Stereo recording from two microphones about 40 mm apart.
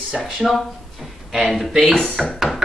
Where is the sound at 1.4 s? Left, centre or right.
Centre.